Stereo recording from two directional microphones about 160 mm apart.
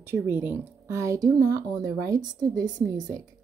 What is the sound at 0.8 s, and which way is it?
Speech, 20° right (ahead or behind).